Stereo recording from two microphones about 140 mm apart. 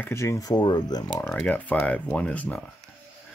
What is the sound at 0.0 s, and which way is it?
Speech, 20° left (ahead or behind).